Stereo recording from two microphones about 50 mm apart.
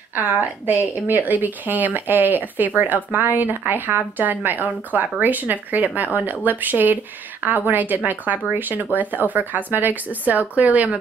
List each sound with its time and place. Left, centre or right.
0.1 s a woman's voice: right